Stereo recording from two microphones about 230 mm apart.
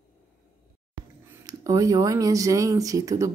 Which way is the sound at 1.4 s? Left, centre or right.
Centre.